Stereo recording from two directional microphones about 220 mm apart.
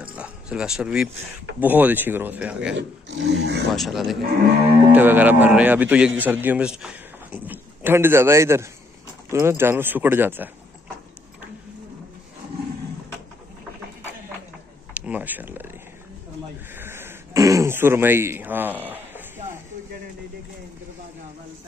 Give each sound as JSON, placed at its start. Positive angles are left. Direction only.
{"t": 0.0, "sound": "a man's voice", "side_deg": -5}
{"t": 2.7, "sound": "speech", "side_deg": -55}
{"t": 3.7, "sound": "a man's voice", "side_deg": 0}
{"t": 15.0, "sound": "speech", "side_deg": -5}
{"t": 16.7, "sound": "throat clearing", "side_deg": -10}